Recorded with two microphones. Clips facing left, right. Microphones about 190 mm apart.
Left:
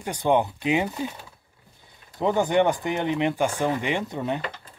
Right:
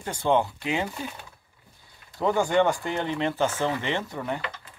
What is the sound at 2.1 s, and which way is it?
Speech, 20° left (ahead or behind).